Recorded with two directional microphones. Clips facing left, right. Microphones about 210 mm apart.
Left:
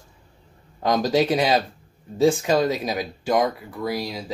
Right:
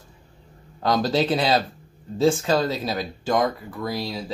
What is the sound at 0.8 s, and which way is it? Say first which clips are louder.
Speech: left 1 dB; 15° left (ahead or behind).